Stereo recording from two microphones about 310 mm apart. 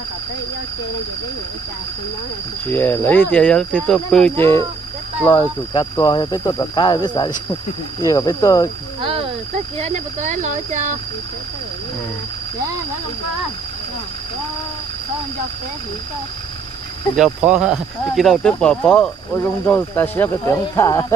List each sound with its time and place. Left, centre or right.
2.6 s speech: centre
9.8 s speech: right
17.1 s speech: centre